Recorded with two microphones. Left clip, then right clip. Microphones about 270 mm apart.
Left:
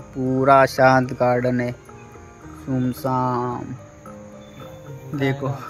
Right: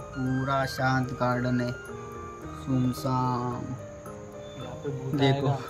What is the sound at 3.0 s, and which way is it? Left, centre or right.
Speech, centre.